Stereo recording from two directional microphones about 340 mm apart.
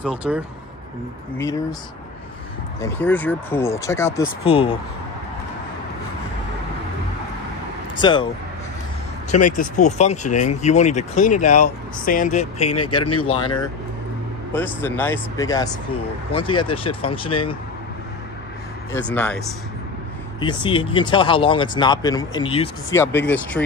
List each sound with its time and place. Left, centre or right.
0.0 s speech: centre
1.4 s speech: centre
2.8 s speech: centre
8.0 s speech: centre
9.3 s speech: left
12.6 s speech: left
13.2 s speech: centre
18.9 s speech: centre